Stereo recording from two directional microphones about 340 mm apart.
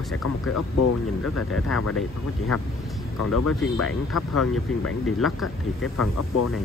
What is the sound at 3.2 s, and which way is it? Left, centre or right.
Speech, left.